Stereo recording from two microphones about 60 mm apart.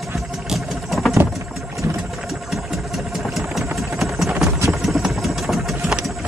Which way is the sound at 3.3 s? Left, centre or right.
Centre.